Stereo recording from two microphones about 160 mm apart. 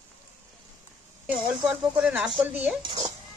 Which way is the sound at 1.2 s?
5° right (ahead or behind).